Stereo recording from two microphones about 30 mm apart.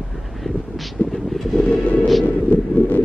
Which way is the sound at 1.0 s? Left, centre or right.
Left.